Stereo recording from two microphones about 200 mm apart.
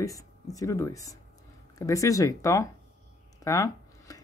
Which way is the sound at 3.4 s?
15° left (ahead or behind).